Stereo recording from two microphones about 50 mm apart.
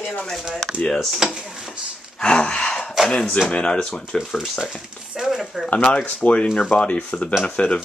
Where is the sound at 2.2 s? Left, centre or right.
Centre.